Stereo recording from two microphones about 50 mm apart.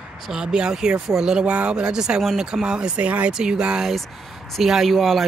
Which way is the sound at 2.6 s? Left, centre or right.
Centre.